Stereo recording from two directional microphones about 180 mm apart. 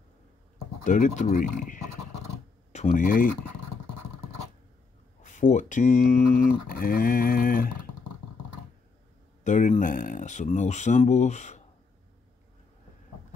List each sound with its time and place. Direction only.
0.8 s speech: 45° left (ahead or behind)
5.2 s speech: 45° left (ahead or behind)
9.4 s speech: 45° left (ahead or behind)